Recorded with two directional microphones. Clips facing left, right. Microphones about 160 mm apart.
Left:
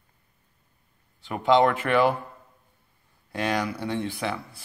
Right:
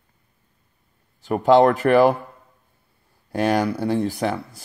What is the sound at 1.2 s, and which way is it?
Speech, 40° right (ahead or behind).